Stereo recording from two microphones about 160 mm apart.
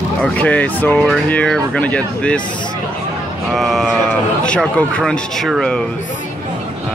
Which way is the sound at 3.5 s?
Centre (ahead or behind).